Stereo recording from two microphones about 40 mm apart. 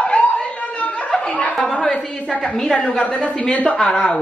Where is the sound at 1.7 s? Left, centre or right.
Left.